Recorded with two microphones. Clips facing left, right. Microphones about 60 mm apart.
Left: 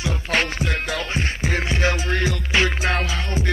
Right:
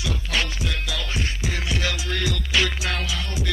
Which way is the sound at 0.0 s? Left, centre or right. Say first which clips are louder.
Left 4 dB; left.